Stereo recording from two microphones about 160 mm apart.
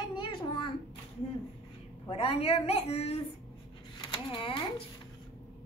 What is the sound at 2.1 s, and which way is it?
A woman's voice, 40° left (ahead or behind).